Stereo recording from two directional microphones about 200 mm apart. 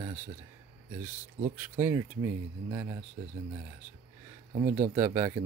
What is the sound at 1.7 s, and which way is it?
Speech, 10° right (ahead or behind).